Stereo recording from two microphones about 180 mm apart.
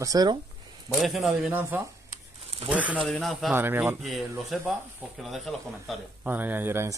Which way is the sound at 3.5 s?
10° right (ahead or behind).